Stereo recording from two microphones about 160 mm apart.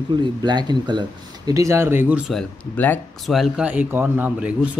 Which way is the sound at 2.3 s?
10° left (ahead or behind).